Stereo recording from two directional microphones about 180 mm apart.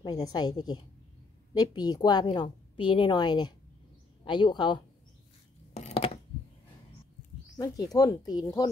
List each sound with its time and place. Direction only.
0.0 s a woman's voice: 20° left (ahead or behind)
5.8 s a sound: 35° left (ahead or behind)
7.5 s a woman's voice: 20° left (ahead or behind)